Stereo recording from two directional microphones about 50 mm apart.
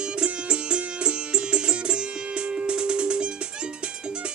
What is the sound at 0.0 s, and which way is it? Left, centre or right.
Music, centre.